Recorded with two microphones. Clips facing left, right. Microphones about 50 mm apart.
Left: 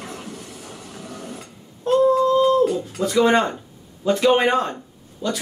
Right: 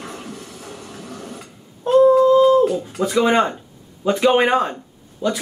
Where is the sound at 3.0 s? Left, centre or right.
Centre.